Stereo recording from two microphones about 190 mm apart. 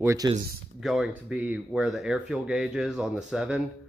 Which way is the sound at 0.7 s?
Centre (ahead or behind).